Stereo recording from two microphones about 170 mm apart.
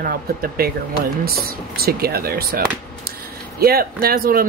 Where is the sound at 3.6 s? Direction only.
65° right (ahead or behind).